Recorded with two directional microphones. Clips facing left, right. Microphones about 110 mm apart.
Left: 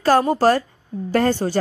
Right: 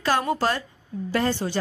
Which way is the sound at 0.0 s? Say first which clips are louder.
Left 7 dB; 40° left (ahead or behind).